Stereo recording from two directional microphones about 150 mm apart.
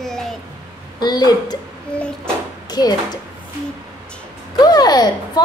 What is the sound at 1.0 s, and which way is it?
Speech, 25° left (ahead or behind).